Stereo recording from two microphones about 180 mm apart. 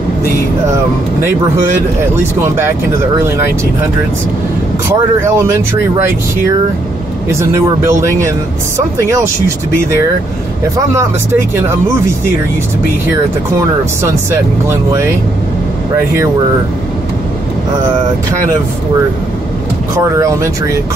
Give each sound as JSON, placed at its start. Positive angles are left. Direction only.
{"t": 2.4, "sound": "speech", "side_deg": -15}
{"t": 4.8, "sound": "speech", "side_deg": -15}
{"t": 7.2, "sound": "speech", "side_deg": -15}
{"t": 14.7, "sound": "speech", "side_deg": -15}
{"t": 20.0, "sound": "speech", "side_deg": -15}